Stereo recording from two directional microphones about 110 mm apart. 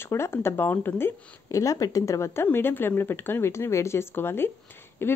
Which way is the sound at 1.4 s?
30° left (ahead or behind).